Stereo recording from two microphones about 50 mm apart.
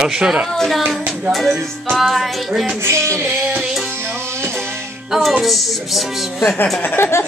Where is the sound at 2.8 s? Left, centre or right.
Right.